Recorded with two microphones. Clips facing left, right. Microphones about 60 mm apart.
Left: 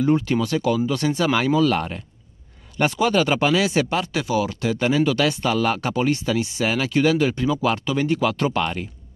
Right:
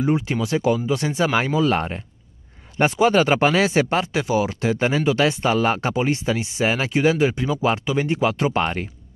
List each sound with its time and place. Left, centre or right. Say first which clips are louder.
0.0 s speech: left 2 dB; centre; by 8.8 s right